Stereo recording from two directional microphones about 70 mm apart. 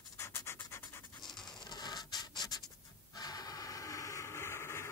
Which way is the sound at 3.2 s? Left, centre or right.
Left.